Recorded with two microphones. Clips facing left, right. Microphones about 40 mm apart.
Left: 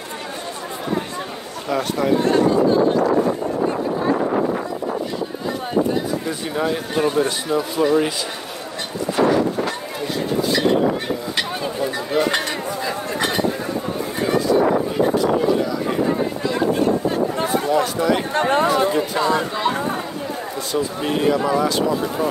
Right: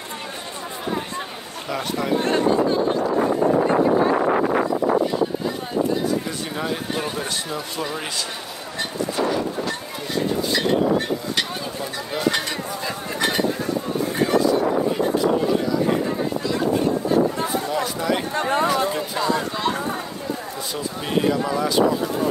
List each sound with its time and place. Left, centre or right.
1.7 s speech: centre
2.1 s speech: right
6.2 s speech: centre
17.6 s speech: centre
18.3 s speech: left
20.7 s speech: centre